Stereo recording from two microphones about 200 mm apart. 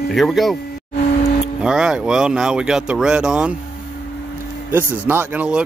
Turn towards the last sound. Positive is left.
turn(degrees=-5)  # may be behind; listen again after turning